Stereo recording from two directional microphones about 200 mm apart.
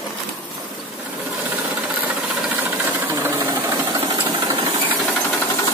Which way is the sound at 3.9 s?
25° right (ahead or behind).